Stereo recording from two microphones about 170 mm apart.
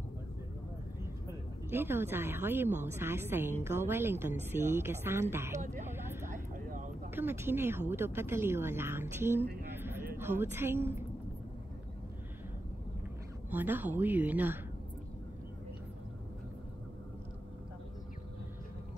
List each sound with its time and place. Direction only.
1.7 s speech: 15° right (ahead or behind)
5.6 s speech: 45° right (ahead or behind)
5.9 s vehicle: 15° right (ahead or behind)
6.3 s vehicle: 50° right (ahead or behind)
7.2 s speech: 15° right (ahead or behind)
9.8 s a sound: 15° right (ahead or behind)
10.1 s a woman's voice: 15° right (ahead or behind)
13.5 s speech: 10° right (ahead or behind)